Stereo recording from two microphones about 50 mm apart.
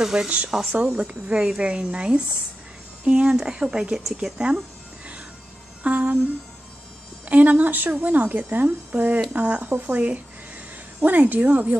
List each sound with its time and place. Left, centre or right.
0.0 s speech: centre
5.9 s speech: right
7.2 s a woman's voice: right